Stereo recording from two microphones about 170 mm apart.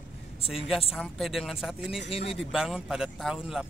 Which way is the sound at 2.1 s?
35° left (ahead or behind).